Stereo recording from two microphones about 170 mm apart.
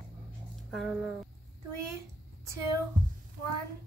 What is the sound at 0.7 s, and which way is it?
Speech, centre (ahead or behind).